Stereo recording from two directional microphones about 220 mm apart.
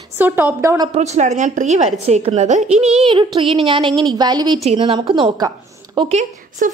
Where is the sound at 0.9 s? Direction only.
30° right (ahead or behind).